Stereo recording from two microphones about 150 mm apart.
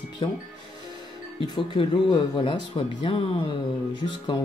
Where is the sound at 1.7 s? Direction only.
35° left (ahead or behind).